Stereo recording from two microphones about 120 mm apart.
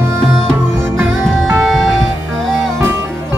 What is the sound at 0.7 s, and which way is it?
Music, 20° right (ahead or behind).